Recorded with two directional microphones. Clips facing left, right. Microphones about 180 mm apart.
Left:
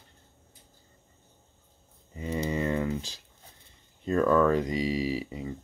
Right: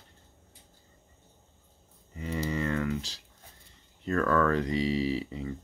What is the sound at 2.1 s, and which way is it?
Speech, 20° left (ahead or behind).